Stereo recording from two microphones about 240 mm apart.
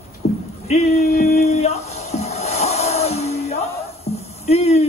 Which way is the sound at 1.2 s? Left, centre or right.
Left.